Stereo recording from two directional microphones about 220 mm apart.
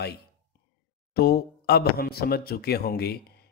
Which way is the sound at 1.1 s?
45° left (ahead or behind).